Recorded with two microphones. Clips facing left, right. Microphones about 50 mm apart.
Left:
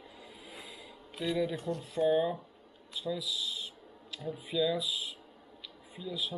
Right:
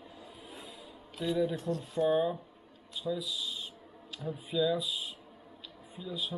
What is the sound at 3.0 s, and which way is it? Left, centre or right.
Speech, centre.